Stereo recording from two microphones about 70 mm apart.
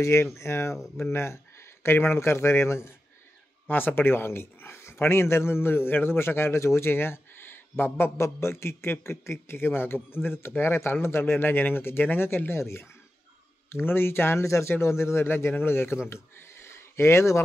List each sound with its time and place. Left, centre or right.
0.0 s speech: left